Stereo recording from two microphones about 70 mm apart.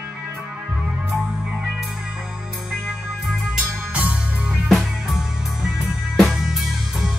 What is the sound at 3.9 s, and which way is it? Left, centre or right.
Music, centre.